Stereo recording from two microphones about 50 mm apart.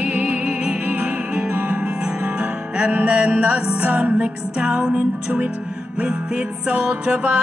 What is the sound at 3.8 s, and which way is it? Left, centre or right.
Music, right.